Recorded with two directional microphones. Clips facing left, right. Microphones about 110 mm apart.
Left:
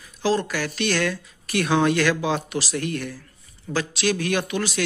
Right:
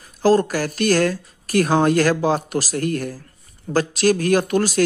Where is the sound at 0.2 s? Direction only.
45° right (ahead or behind).